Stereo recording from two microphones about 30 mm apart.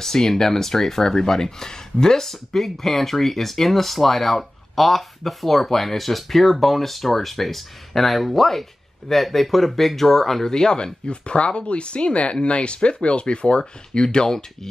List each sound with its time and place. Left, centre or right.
0.0 s speech: centre
10.5 s speech: left